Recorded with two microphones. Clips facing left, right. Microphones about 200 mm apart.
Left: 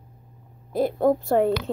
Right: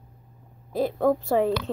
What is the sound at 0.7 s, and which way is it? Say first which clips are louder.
Speech: left 2 dB; centre (ahead or behind).